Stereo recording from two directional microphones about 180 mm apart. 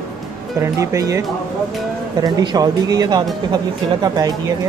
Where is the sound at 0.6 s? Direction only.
15° right (ahead or behind).